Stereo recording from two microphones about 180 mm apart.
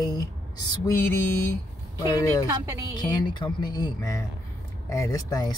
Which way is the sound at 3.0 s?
25° left (ahead or behind).